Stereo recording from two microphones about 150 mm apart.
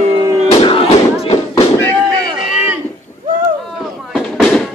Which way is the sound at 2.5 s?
5° right (ahead or behind).